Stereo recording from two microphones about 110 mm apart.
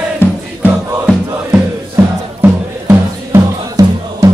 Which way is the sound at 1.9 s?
25° right (ahead or behind).